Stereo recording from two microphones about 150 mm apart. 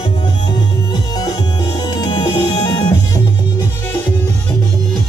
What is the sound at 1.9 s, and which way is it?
Music, 25° left (ahead or behind).